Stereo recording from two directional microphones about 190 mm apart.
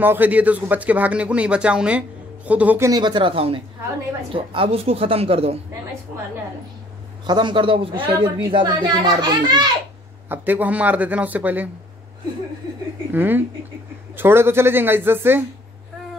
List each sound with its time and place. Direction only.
0.0 s a child's voice: 10° right (ahead or behind); by 5.6 s 30° right (ahead or behind)
7.2 s a child's voice: 25° right (ahead or behind)
10.2 s speech: 10° right (ahead or behind)
13.1 s speech: 10° right (ahead or behind)